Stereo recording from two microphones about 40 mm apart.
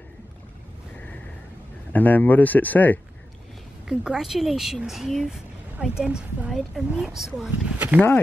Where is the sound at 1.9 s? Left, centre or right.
Left.